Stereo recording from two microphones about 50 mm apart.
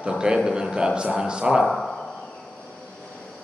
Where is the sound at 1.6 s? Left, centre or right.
Centre.